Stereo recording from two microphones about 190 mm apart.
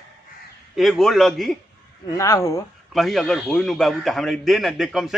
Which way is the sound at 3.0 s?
Centre (ahead or behind).